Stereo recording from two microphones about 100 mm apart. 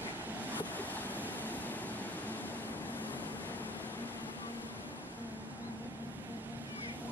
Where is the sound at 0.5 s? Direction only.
15° left (ahead or behind).